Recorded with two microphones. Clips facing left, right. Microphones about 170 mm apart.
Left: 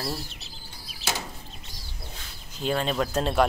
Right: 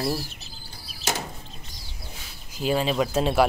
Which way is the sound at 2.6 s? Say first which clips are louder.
Right 3 dB; 5° right (ahead or behind).